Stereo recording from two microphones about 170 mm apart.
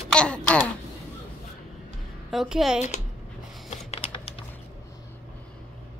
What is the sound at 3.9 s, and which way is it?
Typing, 35° left (ahead or behind).